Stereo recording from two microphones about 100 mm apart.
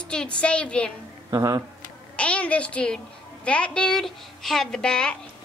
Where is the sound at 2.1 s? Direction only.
10° left (ahead or behind).